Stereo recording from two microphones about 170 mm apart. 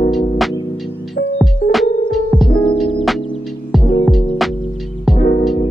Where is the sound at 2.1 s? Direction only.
Centre (ahead or behind).